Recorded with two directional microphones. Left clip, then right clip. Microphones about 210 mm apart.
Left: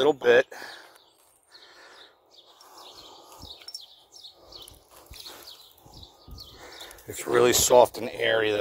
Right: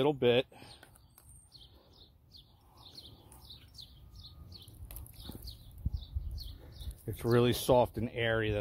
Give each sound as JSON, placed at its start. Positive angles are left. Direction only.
{"t": 0.0, "sound": "speech", "side_deg": 35}
{"t": 7.3, "sound": "speech", "side_deg": 40}